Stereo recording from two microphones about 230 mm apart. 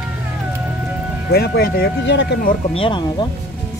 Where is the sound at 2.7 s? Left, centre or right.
Left.